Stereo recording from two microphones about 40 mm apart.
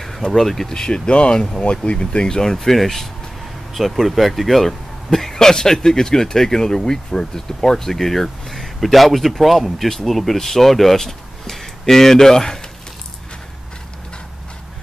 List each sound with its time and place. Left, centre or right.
0.0 s speech: centre
2.2 s speech: centre